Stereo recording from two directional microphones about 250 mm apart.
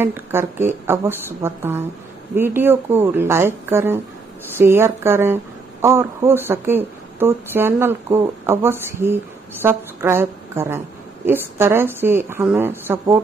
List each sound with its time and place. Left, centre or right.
0.0 s a woman's voice: centre